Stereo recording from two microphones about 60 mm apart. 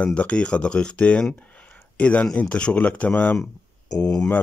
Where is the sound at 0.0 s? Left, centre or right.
Left.